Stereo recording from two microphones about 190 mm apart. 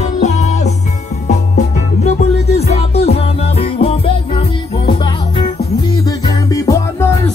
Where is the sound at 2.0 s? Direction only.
35° left (ahead or behind).